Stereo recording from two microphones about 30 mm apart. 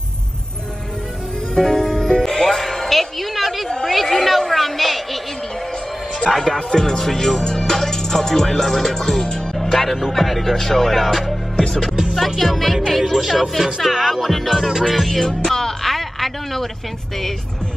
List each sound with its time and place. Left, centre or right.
1.5 s music: centre
2.6 s a sound: centre
6.2 s music: centre
6.5 s speech: centre
7.4 s music: left
9.8 s speech: centre
12.4 s music: centre